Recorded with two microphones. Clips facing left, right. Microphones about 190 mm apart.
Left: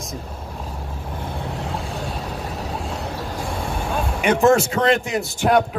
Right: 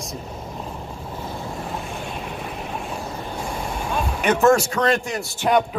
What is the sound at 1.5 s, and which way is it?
Vehicle, 85° left.